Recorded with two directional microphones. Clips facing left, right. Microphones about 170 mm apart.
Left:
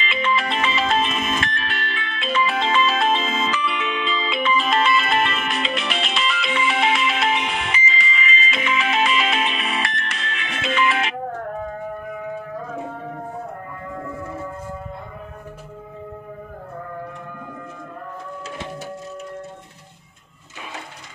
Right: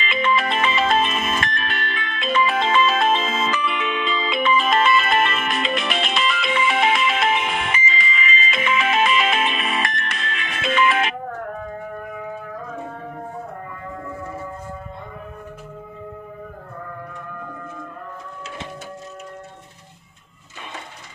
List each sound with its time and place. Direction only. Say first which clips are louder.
0.0 s music: right 2 dB; 50° right (ahead or behind)